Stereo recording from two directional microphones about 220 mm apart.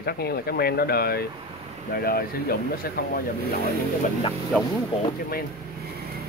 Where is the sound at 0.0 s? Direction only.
45° left (ahead or behind).